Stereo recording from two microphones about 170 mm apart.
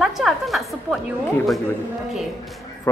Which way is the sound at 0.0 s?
Centre (ahead or behind).